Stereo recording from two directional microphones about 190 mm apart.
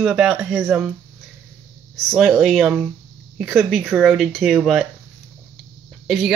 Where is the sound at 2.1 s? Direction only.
Centre (ahead or behind).